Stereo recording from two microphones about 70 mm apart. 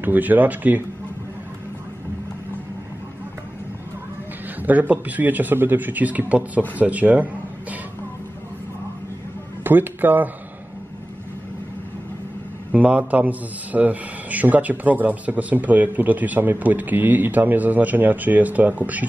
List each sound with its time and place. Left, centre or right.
0.0 s a man's voice: right
4.6 s a man's voice: right
9.6 s speech: right
12.7 s a man's voice: right